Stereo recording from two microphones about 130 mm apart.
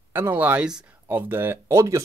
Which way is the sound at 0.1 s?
15° right (ahead or behind).